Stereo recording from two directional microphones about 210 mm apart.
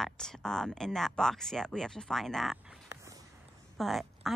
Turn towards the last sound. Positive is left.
turn(degrees=0)  # may be behind; listen again after turning